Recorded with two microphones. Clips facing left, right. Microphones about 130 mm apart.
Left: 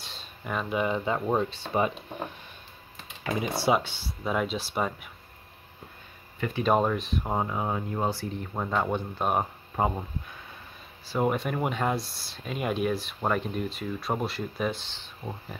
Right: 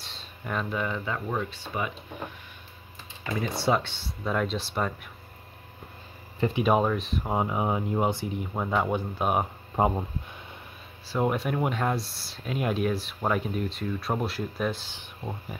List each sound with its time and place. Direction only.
0.0 s a sound: centre (ahead or behind)
0.7 s speech: 20° left (ahead or behind)
3.6 s speech: 5° left (ahead or behind)
6.5 s speech: 5° right (ahead or behind)
7.3 s speech: 15° right (ahead or behind)
8.4 s speech: 5° right (ahead or behind)
9.8 s speech: 20° right (ahead or behind)
11.1 s speech: centre (ahead or behind)